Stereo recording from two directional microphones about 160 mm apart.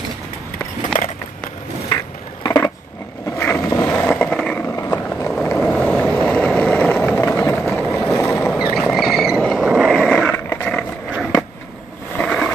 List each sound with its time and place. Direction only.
2.4 s a sound: 25° left (ahead or behind)
3.3 s vehicle: 15° left (ahead or behind)
5.5 s vehicle: 5° left (ahead or behind)
7.8 s vehicle: centre (ahead or behind)
8.2 s boat: 15° left (ahead or behind)
8.5 s vehicle: 5° right (ahead or behind)
8.8 s roaring cats: centre (ahead or behind)
10.3 s a sound: 15° left (ahead or behind)
12.2 s a sound: 5° left (ahead or behind)